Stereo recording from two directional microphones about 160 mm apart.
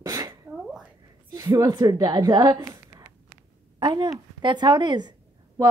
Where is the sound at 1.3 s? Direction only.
25° right (ahead or behind).